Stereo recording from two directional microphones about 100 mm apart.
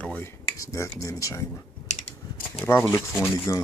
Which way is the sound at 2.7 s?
25° left (ahead or behind).